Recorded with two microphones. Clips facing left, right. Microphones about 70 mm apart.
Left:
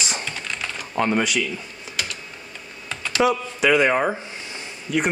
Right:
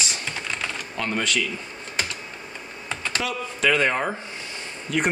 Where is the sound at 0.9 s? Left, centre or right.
Centre.